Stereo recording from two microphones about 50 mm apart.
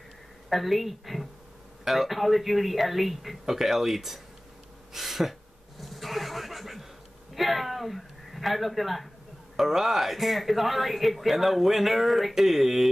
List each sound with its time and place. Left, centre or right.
0.5 s speech: centre
4.9 s a sound: centre
9.6 s speech: centre